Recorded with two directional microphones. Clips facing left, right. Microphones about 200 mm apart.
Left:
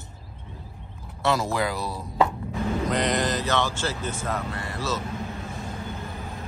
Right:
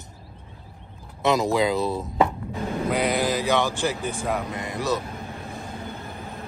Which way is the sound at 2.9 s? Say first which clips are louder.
Right 3 dB; 10° right (ahead or behind).